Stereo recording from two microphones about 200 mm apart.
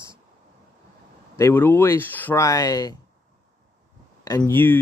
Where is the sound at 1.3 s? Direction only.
10° left (ahead or behind).